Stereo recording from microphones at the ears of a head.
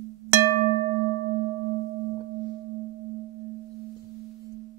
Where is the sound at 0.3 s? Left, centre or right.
Right.